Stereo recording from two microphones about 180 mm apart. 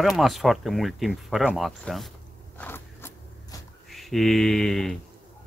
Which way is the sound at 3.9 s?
Centre (ahead or behind).